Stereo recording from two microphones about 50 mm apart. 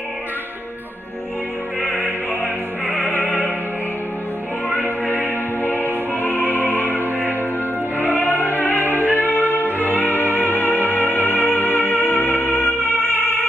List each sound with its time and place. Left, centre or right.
1.9 s music: left
3.1 s music: left
5.0 s music: left
8.2 s music: left
8.8 s music: right
9.1 s music: left